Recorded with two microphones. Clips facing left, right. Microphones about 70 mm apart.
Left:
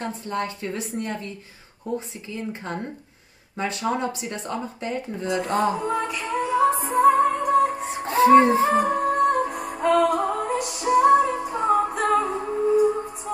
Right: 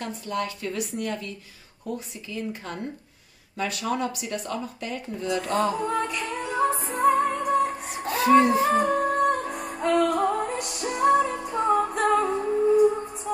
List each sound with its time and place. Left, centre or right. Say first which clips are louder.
0.0 s speech: left 2 dB; left
5.8 s music: left 1 dB; centre
7.8 s music: left 6 dB; left
8.7 s music: left 2 dB; centre
12.4 s music: right 1 dB; centre